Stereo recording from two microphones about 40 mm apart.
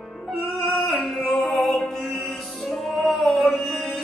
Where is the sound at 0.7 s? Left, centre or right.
Centre.